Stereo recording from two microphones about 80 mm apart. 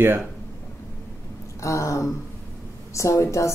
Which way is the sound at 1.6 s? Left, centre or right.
Left.